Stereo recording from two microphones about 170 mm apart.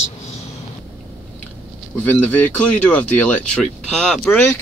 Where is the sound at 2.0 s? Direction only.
10° left (ahead or behind).